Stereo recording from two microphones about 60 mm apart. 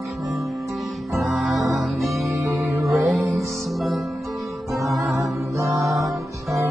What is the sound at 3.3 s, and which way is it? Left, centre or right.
Music, centre.